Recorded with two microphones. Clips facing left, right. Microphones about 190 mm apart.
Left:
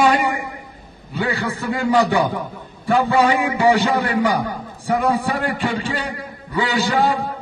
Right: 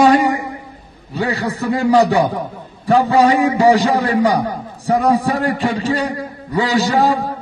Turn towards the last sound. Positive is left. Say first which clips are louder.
# right 3 dB
turn(degrees=-40)  # may be behind; listen again after turning